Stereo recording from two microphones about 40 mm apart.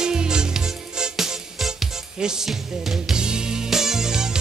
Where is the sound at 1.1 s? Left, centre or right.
Centre.